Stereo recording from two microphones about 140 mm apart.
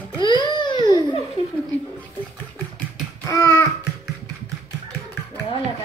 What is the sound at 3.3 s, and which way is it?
Babbling, 20° left (ahead or behind).